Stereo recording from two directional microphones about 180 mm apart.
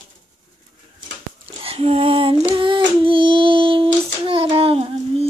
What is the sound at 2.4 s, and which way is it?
Child singing, 25° right (ahead or behind).